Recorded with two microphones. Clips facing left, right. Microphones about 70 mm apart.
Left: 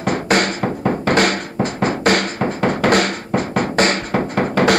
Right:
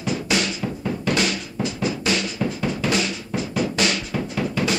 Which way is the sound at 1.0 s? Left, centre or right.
Left.